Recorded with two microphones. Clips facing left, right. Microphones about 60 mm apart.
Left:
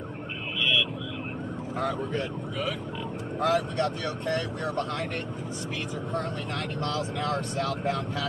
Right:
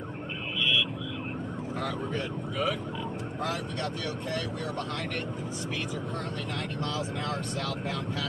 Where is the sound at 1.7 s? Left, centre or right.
Centre.